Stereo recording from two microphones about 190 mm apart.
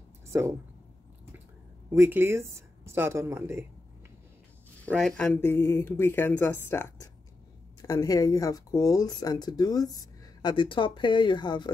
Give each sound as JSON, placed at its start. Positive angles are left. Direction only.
{"t": 0.3, "sound": "speech", "side_deg": -15}
{"t": 1.9, "sound": "speech", "side_deg": -10}
{"t": 4.9, "sound": "speech", "side_deg": 5}